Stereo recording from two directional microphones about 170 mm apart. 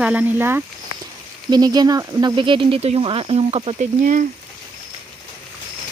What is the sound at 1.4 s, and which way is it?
Speech, 25° right (ahead or behind).